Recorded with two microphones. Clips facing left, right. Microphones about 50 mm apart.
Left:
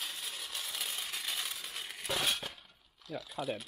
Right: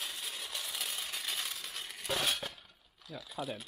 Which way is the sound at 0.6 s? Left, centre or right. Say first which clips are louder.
Even; centre.